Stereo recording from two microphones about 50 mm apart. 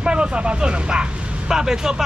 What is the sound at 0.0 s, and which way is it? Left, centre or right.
Speech, centre.